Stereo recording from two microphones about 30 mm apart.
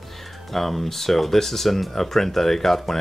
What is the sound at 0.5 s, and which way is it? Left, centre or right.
Speech, centre.